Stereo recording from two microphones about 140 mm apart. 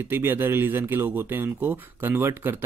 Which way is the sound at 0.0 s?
15° right (ahead or behind).